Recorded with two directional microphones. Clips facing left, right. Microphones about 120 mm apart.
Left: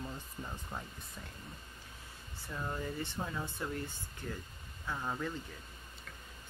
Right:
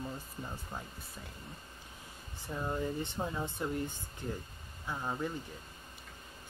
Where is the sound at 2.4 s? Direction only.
25° right (ahead or behind).